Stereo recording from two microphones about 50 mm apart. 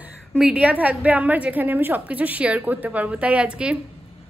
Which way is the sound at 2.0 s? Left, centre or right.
Right.